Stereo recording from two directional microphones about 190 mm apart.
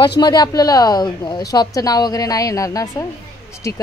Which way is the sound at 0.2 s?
20° left (ahead or behind).